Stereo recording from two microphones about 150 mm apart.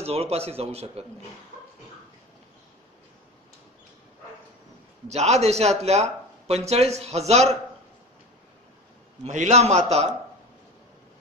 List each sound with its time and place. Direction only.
0.0 s speech: 45° right (ahead or behind)
5.0 s speech: 50° right (ahead or behind)
9.2 s speech: 50° right (ahead or behind)